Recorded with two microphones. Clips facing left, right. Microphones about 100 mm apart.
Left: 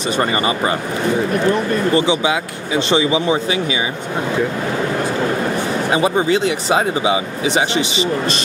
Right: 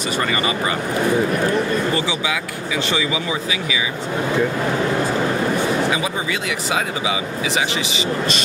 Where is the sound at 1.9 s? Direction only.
25° left (ahead or behind).